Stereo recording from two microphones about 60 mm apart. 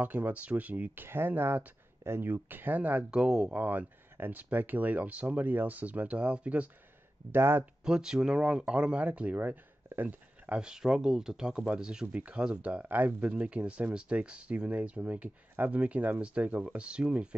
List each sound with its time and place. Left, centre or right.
0.0 s speech: right
1.0 s speech: right
3.1 s speech: centre
3.5 s speech: right
7.3 s speech: right
7.8 s speech: centre
9.8 s a sound: right
10.6 s speech: centre
12.8 s speech: right